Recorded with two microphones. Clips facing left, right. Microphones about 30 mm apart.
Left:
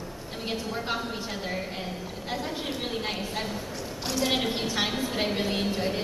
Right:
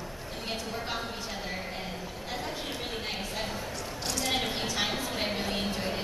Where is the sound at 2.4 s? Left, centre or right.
Centre.